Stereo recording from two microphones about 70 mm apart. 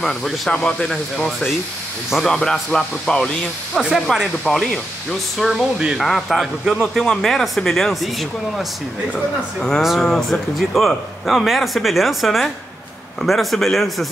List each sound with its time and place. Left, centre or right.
0.0 s speech: centre
2.0 s speech: centre
2.3 s speech: centre
5.4 s speech: centre
5.9 s speech: centre